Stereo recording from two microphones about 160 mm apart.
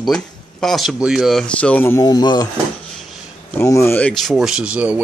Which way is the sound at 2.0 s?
25° left (ahead or behind).